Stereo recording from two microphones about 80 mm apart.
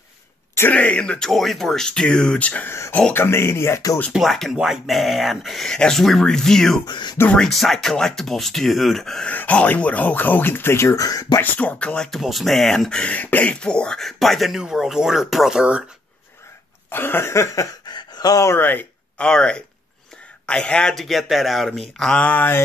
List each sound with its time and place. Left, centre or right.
0.6 s speech: centre
1.3 s speech: centre; by 3.8 s left
4.1 s speech: centre
6.9 s speech: left
7.2 s speech: centre
9.3 s speech: centre
11.0 s speech: left
11.4 s speech: centre
12.1 s speech: centre
16.9 s speech: left
17.8 s a sound: left
18.3 s speech: left
18.6 s speech: left
19.1 s speech: centre